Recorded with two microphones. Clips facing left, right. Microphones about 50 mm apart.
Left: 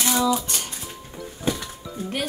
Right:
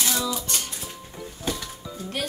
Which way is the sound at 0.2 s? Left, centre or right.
Centre.